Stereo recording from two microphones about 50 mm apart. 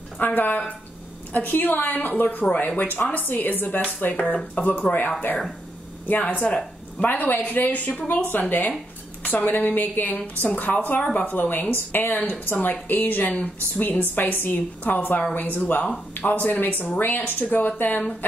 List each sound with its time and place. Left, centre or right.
0.2 s speech: left
2.8 s speech: left